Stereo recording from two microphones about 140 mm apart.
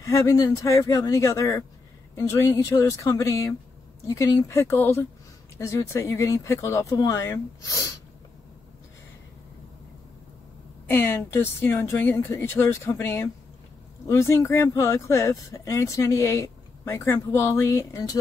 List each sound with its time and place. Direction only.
0.0 s speech: 20° left (ahead or behind)
10.9 s speech: 15° left (ahead or behind)